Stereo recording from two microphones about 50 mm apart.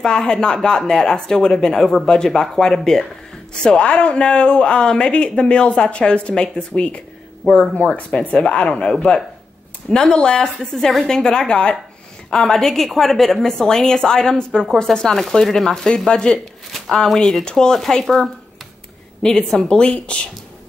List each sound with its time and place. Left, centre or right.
0.0 s speech: centre
3.6 s speech: left; by 11.1 s centre
11.1 s speech: centre
19.2 s speech: centre
19.7 s speech: left